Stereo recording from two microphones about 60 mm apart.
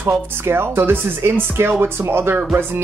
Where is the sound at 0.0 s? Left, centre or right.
Right.